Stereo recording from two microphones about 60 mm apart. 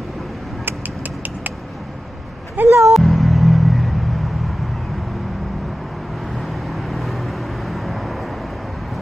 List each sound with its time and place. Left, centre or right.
2.6 s a sound: right
2.9 s music: centre
6.4 s vehicle: centre